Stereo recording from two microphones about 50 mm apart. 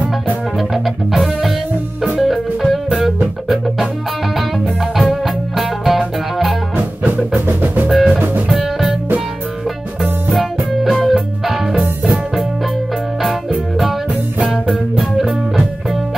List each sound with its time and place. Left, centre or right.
0.6 s music: centre
5.2 s music: centre
6.8 s music: right
7.9 s music: centre
10.3 s music: centre
14.5 s music: centre